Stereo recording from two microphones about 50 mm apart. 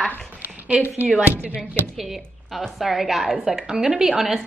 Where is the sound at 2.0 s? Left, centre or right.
Centre.